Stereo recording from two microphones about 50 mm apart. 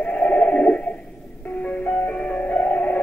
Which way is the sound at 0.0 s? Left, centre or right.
Left.